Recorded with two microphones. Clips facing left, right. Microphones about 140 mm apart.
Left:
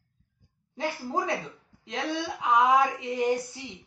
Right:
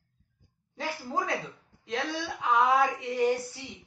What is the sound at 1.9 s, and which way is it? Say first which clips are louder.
Speech: left 1 dB; 15° left (ahead or behind).